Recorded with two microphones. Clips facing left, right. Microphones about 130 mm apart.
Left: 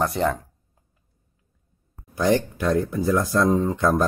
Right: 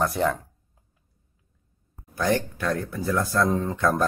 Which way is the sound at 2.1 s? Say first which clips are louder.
Left 4 dB; 20° left (ahead or behind).